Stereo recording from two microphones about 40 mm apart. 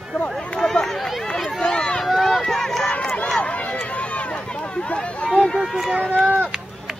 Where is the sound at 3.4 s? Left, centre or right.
Left.